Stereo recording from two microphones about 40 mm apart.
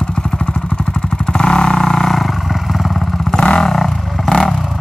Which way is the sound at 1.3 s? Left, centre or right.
Left.